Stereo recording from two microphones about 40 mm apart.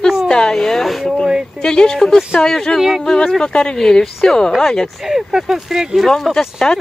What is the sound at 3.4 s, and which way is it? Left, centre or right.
Speech, left.